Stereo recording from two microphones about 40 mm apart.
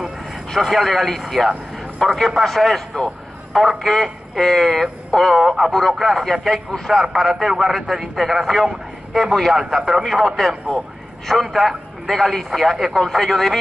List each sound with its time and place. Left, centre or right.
0.6 s a man's voice: centre